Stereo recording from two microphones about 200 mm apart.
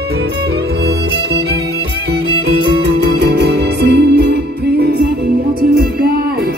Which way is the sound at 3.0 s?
55° right (ahead or behind).